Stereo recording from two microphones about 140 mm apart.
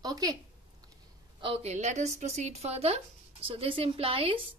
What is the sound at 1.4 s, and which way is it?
A woman's voice, 45° right (ahead or behind).